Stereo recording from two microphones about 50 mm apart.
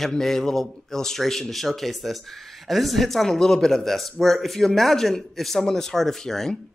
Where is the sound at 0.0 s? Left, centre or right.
Centre.